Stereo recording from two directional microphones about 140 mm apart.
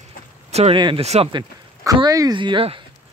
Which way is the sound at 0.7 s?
35° right (ahead or behind).